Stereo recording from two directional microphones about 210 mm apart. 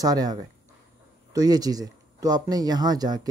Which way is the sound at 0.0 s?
20° right (ahead or behind).